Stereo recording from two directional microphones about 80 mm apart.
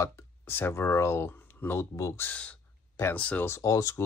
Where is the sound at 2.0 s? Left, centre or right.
Left.